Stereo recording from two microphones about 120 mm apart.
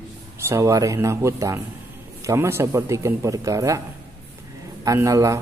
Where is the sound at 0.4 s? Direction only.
25° right (ahead or behind).